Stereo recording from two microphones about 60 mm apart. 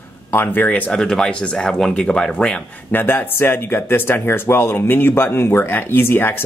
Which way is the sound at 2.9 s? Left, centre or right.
Left.